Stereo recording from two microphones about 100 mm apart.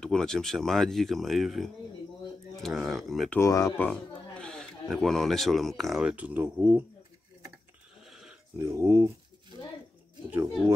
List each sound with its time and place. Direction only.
0.0 s speech: 5° left (ahead or behind)
3.3 s speech: 30° left (ahead or behind)
3.7 s speech: 15° left (ahead or behind); by 6.1 s centre (ahead or behind)
6.1 s speech: 15° right (ahead or behind)
8.0 s pig: 5° right (ahead or behind)
8.5 s speech: 30° right (ahead or behind)